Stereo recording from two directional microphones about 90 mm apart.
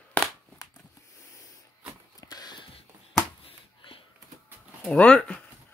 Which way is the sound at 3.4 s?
90° left.